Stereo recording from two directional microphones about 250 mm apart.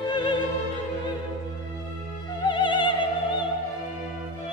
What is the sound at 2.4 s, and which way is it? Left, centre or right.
Opera, centre.